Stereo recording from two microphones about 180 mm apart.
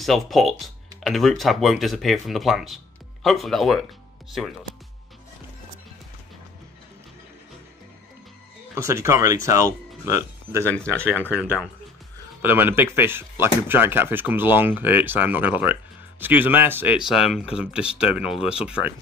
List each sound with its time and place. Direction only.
0.0 s speech: centre (ahead or behind)
8.7 s speech: 15° right (ahead or behind)